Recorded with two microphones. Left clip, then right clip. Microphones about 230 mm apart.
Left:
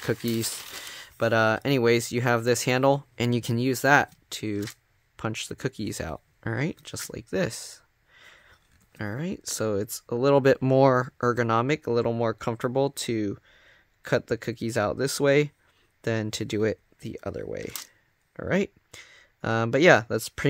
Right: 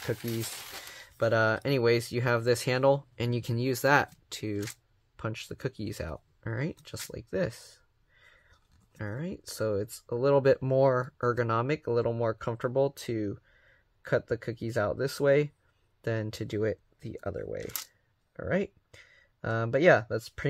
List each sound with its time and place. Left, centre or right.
0.4 s speech: left